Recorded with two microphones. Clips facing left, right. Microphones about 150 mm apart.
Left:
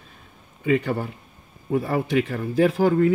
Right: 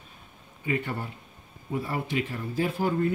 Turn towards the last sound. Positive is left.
turn(degrees=90)